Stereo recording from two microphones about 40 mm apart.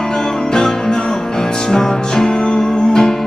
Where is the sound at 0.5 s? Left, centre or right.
Centre.